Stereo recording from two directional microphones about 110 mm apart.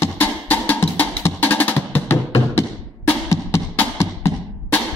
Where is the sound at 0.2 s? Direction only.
15° left (ahead or behind).